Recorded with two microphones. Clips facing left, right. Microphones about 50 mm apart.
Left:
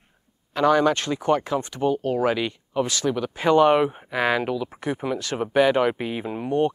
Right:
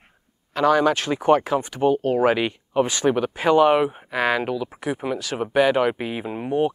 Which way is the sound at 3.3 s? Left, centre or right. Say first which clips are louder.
Left 1 dB; centre.